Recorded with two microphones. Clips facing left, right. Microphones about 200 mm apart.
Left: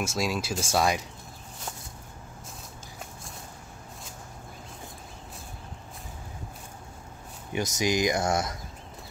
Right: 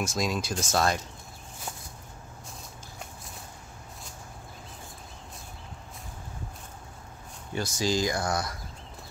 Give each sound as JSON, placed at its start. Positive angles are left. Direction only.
{"t": 0.0, "sound": "speech", "side_deg": 5}
{"t": 7.5, "sound": "speech", "side_deg": 20}